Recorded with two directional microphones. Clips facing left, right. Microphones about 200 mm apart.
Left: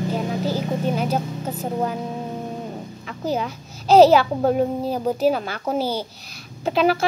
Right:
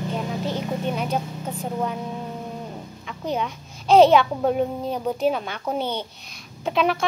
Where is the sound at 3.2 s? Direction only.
5° left (ahead or behind).